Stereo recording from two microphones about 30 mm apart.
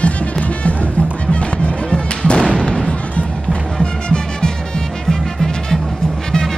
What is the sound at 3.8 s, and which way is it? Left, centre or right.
Music, left.